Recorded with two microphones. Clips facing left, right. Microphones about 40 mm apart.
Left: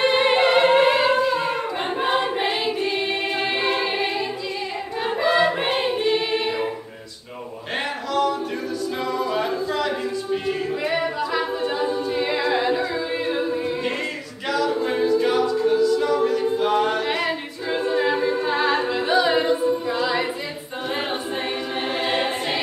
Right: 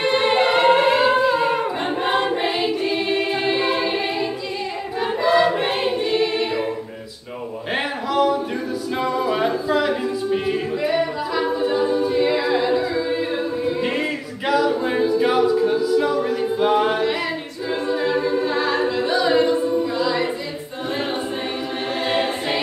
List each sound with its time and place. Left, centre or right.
0.0 s singing: centre
2.3 s choir: centre
3.2 s a capella: centre
5.0 s choir: centre
8.1 s a sound: centre
9.0 s singing: centre
10.3 s music: centre
10.8 s a capella: centre
14.5 s a capella: centre
17.6 s a capella: centre
20.0 s music: centre
22.1 s choir: centre